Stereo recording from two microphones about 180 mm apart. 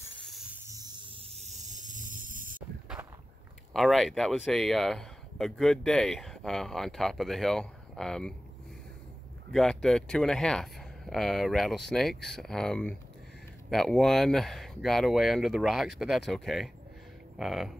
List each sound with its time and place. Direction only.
0.2 s snake: centre (ahead or behind); by 2.6 s 50° right (ahead or behind)
3.7 s speech: centre (ahead or behind)
9.5 s speech: centre (ahead or behind)